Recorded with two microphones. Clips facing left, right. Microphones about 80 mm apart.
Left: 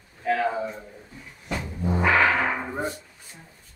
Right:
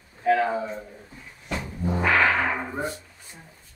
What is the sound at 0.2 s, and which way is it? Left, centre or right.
Speech, centre.